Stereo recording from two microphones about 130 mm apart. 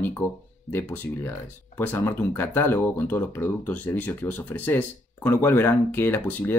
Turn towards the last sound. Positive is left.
turn(degrees=15)  # may be behind; listen again after turning